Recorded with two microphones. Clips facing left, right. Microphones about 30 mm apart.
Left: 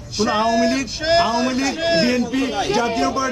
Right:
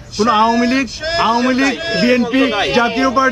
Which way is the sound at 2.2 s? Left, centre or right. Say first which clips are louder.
Right 6 dB; right.